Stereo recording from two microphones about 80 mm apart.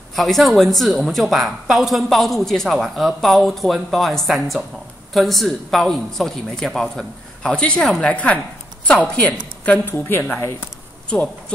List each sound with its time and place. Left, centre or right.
0.1 s a woman's voice: centre
9.7 s a woman's voice: left